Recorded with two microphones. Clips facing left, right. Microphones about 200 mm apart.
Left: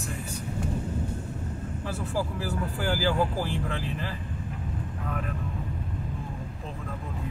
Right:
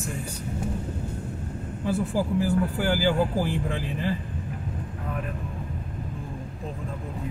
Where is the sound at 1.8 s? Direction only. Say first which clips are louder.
Right 6 dB; 15° right (ahead or behind).